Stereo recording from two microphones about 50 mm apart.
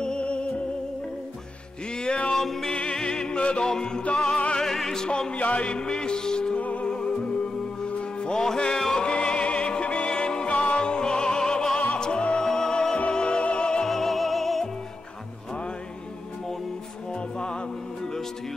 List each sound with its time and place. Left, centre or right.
0.0 s music: centre
2.0 s music: centre
2.3 s music: centre
2.7 s music: centre
4.6 s music: centre
6.6 s music: left
13.8 s music: centre
17.1 s music: centre